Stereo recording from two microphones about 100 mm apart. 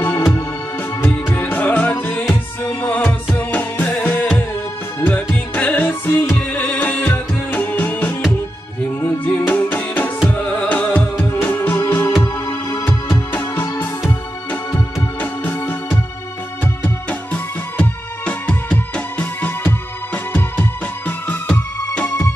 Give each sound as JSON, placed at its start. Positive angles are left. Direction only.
{"t": 1.0, "sound": "music", "side_deg": 20}
{"t": 21.3, "sound": "music", "side_deg": 10}